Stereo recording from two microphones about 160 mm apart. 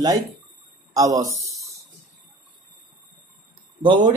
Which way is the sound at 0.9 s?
20° right (ahead or behind).